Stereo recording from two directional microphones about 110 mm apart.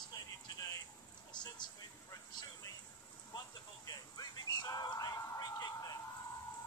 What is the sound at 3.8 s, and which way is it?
Music, 40° left (ahead or behind).